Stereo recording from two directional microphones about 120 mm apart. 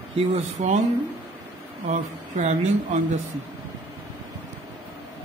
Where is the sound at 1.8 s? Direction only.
75° right (ahead or behind).